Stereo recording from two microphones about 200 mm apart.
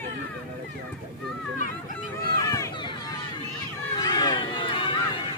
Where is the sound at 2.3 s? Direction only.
15° left (ahead or behind).